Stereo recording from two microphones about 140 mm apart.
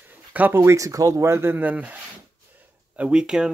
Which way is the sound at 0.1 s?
10° right (ahead or behind).